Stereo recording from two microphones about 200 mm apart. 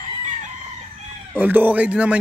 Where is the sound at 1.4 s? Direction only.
10° right (ahead or behind).